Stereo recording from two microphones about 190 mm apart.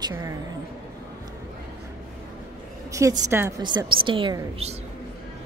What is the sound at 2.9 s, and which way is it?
A woman's voice, 15° right (ahead or behind).